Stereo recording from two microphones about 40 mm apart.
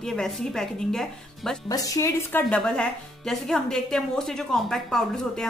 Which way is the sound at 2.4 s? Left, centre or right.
Left.